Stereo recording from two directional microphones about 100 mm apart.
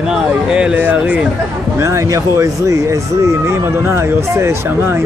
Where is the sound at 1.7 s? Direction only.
30° right (ahead or behind).